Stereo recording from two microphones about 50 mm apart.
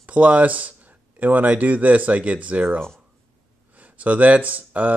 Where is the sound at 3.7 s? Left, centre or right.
Right.